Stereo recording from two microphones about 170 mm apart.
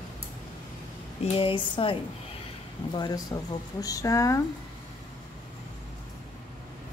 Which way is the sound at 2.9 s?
25° left (ahead or behind).